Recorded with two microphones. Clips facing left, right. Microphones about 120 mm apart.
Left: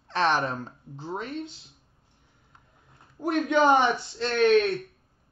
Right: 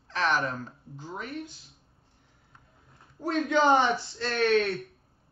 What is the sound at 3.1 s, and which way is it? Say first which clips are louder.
A woman's voice: left 2 dB; 15° left (ahead or behind).